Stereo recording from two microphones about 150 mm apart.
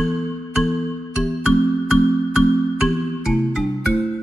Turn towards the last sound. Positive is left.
turn(degrees=0)  # may be behind; listen again after turning